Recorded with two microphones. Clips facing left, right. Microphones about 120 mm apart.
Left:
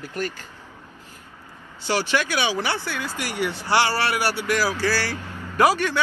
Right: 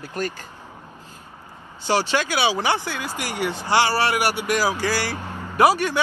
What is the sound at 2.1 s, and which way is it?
Speech, 30° right (ahead or behind).